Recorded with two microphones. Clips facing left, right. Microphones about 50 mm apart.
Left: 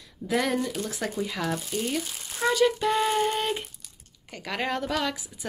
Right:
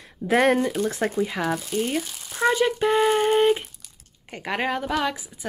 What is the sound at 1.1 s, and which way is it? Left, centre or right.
Speech, right.